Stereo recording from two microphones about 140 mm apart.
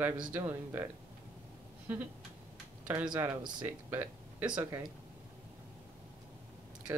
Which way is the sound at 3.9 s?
15° right (ahead or behind).